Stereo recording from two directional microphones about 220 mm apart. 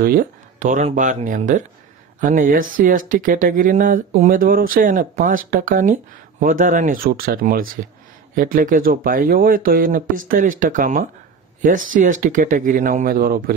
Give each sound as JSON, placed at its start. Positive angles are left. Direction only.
{"t": 0.0, "sound": "speech", "side_deg": -40}